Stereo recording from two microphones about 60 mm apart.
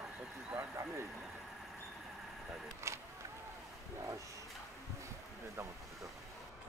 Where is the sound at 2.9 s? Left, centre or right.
Right.